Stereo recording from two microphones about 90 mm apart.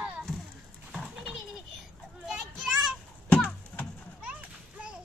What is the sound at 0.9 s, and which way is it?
Goat, 5° left (ahead or behind).